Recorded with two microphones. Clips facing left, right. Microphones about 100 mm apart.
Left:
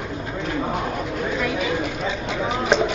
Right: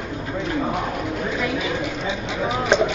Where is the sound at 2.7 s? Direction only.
Centre (ahead or behind).